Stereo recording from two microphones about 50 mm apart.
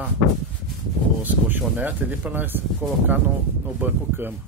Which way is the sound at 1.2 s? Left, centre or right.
Right.